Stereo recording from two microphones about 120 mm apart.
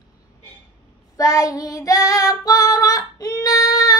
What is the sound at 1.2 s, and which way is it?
Child singing, 30° left (ahead or behind).